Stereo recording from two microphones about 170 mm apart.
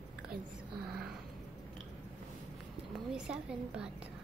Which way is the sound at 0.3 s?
65° right (ahead or behind).